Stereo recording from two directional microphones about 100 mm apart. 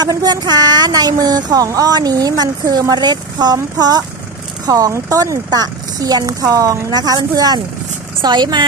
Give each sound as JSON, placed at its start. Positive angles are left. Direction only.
{"t": 0.0, "sound": "a woman's voice", "side_deg": -40}